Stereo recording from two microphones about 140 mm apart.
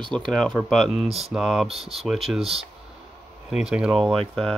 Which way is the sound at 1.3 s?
Centre (ahead or behind).